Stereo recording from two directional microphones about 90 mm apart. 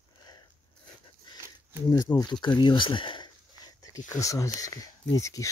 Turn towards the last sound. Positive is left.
turn(degrees=35)  # may be behind; listen again after turning